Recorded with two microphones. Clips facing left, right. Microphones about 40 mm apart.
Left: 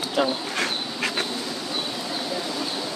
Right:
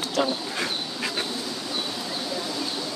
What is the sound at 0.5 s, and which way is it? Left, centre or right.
Duck, left.